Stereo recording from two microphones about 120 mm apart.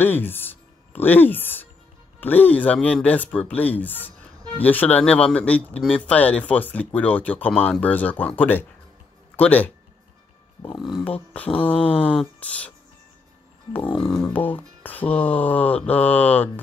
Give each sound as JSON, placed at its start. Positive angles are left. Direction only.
{"t": 0.0, "sound": "speech", "side_deg": 15}
{"t": 11.3, "sound": "speech", "side_deg": 10}
{"t": 14.1, "sound": "speech", "side_deg": 10}